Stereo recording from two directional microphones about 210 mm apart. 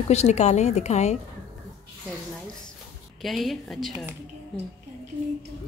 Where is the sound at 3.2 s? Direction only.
Centre (ahead or behind).